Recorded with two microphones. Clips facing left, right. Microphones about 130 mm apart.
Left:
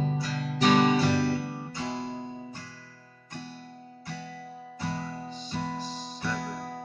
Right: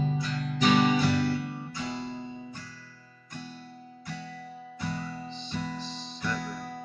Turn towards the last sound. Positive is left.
turn(degrees=30)  # may be behind; listen again after turning